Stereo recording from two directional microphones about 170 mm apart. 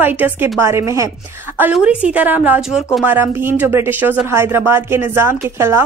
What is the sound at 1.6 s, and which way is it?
Speech, 5° right (ahead or behind).